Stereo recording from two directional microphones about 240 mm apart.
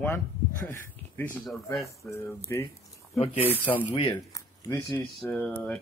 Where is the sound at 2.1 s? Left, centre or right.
Centre.